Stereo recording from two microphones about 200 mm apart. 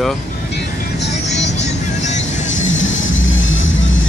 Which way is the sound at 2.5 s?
75° left (ahead or behind).